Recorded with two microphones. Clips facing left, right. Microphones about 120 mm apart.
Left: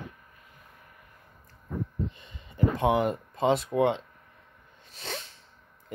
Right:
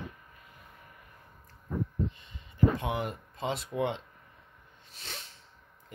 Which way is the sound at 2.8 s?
90° left.